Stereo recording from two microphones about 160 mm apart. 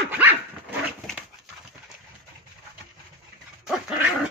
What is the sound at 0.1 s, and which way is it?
Dog, 10° right (ahead or behind).